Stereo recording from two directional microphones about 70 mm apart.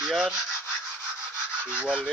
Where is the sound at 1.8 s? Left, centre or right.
Centre.